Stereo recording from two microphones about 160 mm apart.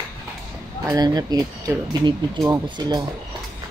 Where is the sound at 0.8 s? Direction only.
25° right (ahead or behind).